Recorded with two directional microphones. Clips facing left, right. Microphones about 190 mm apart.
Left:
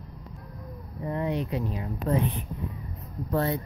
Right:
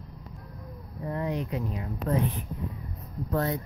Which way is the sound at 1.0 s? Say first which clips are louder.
Left 2 dB; 20° left (ahead or behind).